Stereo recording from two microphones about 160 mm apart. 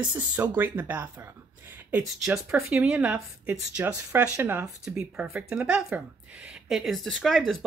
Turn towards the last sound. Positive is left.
turn(degrees=0)  # may be behind; listen again after turning